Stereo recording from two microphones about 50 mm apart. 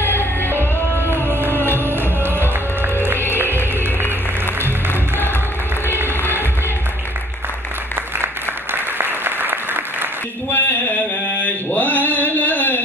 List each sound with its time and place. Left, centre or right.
0.0 s music: left
1.9 s music: right
8.7 s applause: right
10.5 s a sound: left
11.4 s mantra: left